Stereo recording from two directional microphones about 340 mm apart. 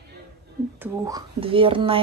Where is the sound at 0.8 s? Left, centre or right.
Centre.